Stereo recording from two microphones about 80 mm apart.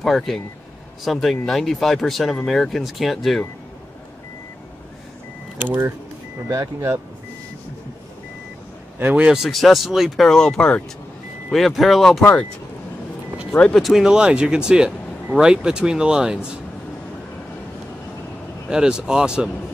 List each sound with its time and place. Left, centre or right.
0.0 s speech: centre
5.6 s speech: right
6.5 s speech: right
9.0 s speech: centre
9.4 s speech: centre
11.5 s speech: centre
13.5 s speech: centre
13.8 s speech: centre
18.7 s speech: centre